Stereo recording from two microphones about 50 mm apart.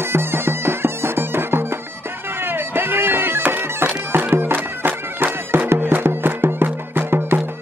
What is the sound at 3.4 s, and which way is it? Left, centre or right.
Bagpipes, right.